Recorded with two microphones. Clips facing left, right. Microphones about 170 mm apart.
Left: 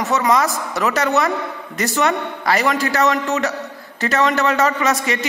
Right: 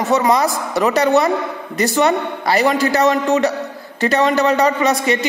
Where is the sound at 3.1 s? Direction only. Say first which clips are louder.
Right 5 dB; 35° right (ahead or behind).